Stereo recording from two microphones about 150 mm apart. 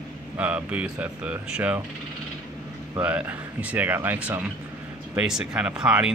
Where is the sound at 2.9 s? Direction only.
10° right (ahead or behind).